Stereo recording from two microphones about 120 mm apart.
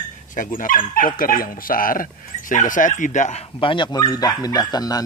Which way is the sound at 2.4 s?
90° left.